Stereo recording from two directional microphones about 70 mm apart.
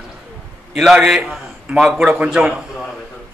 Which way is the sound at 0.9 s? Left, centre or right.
Centre.